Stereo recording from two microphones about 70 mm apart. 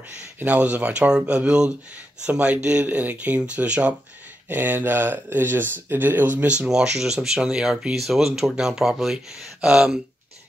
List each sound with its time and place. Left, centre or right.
0.4 s speech: centre
6.7 s speech: centre